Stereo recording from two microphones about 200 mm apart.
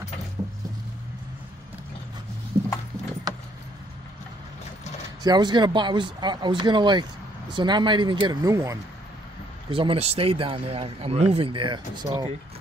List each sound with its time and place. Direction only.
5.2 s speech: 20° right (ahead or behind)
9.7 s speech: 25° right (ahead or behind)